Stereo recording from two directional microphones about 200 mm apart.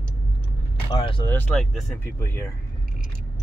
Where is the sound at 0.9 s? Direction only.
25° left (ahead or behind).